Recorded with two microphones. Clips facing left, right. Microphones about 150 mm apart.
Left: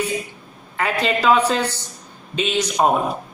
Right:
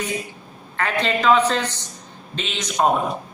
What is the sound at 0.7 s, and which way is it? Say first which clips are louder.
A man's voice: left 1 dB; 10° left (ahead or behind).